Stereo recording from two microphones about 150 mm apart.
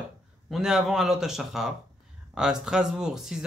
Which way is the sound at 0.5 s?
5° right (ahead or behind).